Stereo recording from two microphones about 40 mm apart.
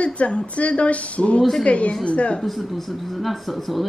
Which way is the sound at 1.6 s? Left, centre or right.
Left.